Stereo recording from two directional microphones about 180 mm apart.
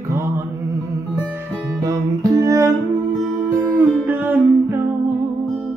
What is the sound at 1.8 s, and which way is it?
Music, 20° right (ahead or behind).